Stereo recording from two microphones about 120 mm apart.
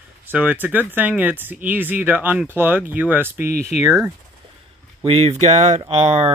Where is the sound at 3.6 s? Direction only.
70° left (ahead or behind).